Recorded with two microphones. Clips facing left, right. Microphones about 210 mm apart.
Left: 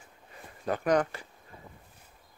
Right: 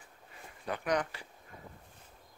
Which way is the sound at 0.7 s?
45° left (ahead or behind).